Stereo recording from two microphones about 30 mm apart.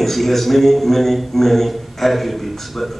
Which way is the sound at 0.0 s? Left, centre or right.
Centre.